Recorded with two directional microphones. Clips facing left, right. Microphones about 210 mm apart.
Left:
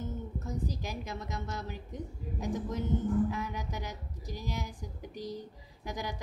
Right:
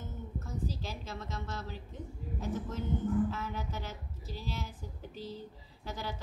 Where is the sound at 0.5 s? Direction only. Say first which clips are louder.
Left 2 dB; 15° left (ahead or behind).